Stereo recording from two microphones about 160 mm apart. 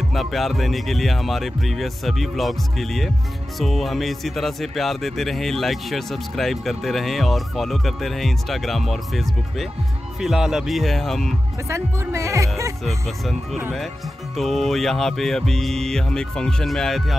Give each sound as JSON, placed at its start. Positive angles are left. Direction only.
{"t": 0.1, "sound": "speech", "side_deg": 0}
{"t": 11.7, "sound": "speech", "side_deg": -20}
{"t": 12.8, "sound": "speech", "side_deg": 0}